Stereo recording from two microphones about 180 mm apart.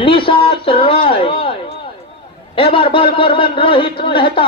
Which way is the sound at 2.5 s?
30° left (ahead or behind).